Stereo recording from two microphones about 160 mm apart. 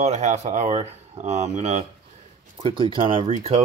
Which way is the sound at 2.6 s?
30° right (ahead or behind).